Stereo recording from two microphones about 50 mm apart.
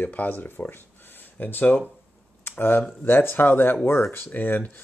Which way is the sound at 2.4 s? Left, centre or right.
Left.